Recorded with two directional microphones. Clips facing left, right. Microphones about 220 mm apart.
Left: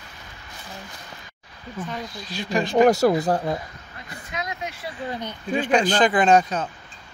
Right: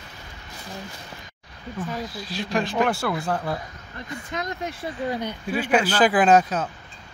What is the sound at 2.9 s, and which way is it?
Speech, 40° left (ahead or behind).